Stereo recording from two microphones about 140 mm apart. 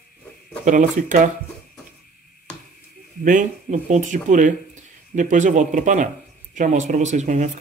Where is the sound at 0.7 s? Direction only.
65° right (ahead or behind).